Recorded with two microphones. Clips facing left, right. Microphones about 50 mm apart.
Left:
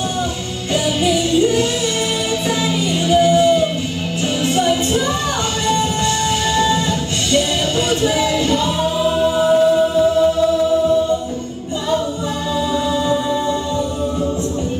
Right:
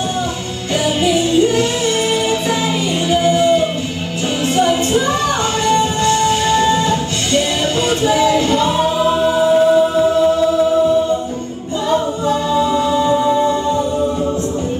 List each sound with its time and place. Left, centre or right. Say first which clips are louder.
0.8 s music: right 3 dB; right
3.1 s music: left 1 dB; right
7.9 s choir: right 5 dB; right
12.5 s music: right 1 dB; right